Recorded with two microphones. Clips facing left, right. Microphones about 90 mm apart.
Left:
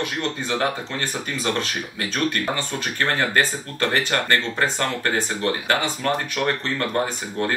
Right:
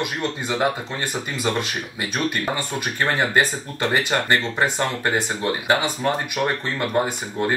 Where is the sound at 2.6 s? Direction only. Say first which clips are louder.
Right 1 dB; 15° right (ahead or behind).